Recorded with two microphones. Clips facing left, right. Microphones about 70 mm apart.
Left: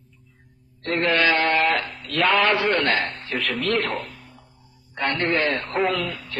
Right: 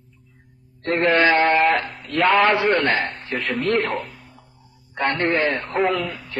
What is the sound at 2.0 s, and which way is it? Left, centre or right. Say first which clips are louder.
A man's voice: right 3 dB; centre.